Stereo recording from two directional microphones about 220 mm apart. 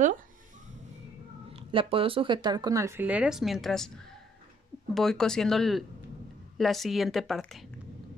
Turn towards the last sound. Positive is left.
turn(degrees=0)  # may be behind; listen again after turning